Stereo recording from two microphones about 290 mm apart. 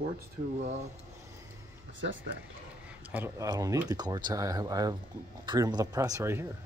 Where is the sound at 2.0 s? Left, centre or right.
Right.